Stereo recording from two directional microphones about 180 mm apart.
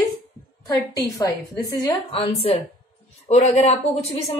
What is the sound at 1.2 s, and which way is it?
A woman's voice, 20° left (ahead or behind).